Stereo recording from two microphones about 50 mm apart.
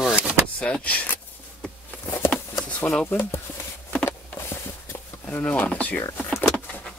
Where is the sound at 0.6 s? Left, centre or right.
Left.